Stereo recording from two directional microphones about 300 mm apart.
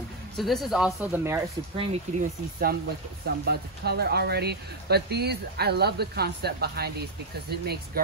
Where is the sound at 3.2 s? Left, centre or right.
Right.